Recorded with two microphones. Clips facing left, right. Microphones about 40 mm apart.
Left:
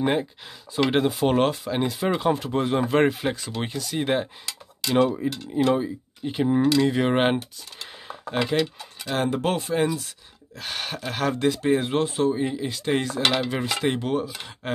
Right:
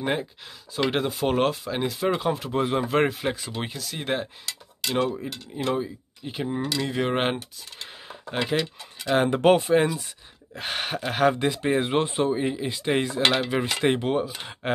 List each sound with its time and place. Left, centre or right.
0.0 s speech: centre
7.8 s speech: centre